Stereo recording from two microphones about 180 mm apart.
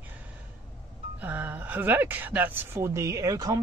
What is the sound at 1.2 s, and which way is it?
Speech, 10° right (ahead or behind).